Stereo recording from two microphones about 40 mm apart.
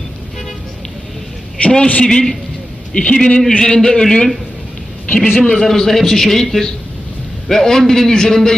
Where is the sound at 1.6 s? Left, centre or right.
Left.